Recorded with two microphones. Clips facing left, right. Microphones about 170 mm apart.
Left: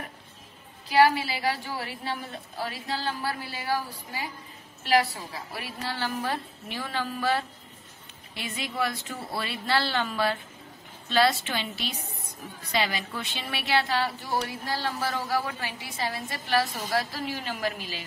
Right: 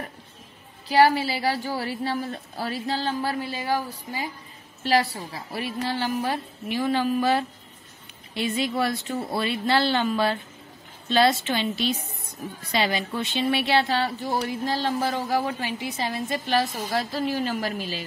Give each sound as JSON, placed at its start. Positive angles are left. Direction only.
{"t": 0.8, "sound": "a woman's voice", "side_deg": -30}
{"t": 8.4, "sound": "speech", "side_deg": -30}
{"t": 17.3, "sound": "a woman's voice", "side_deg": -35}